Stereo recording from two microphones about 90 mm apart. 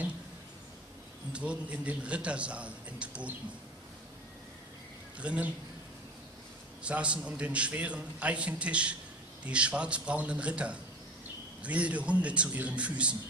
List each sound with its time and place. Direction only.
1.3 s a man's voice: 15° right (ahead or behind)
5.2 s a man's voice: 15° right (ahead or behind)
6.8 s a man's voice: 15° right (ahead or behind)